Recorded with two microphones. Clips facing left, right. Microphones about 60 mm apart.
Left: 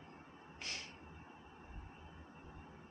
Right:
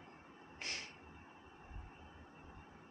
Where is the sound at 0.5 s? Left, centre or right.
Right.